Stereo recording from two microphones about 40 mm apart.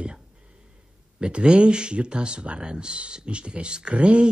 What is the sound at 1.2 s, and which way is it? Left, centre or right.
Speech, right.